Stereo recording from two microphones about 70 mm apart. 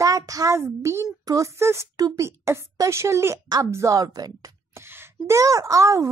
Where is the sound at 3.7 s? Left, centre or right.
Right.